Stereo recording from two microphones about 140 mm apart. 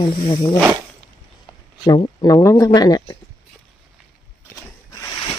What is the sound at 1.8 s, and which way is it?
Speech, 30° left (ahead or behind).